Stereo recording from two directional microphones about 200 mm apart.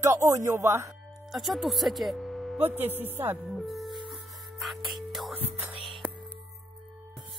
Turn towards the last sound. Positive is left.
turn(degrees=0)  # may be behind; listen again after turning